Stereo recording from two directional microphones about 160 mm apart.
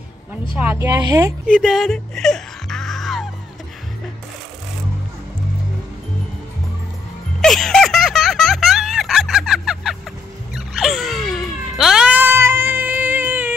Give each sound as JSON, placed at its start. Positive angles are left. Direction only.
{"t": 0.6, "sound": "a woman's voice", "side_deg": -15}
{"t": 1.5, "sound": "music", "side_deg": 0}
{"t": 7.4, "sound": "music", "side_deg": 0}
{"t": 10.5, "sound": "baby cry", "side_deg": 0}